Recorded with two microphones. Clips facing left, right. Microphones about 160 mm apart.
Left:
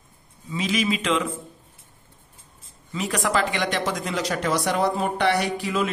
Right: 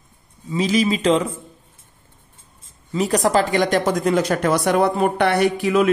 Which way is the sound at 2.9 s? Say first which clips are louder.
Right 6 dB; 40° right (ahead or behind).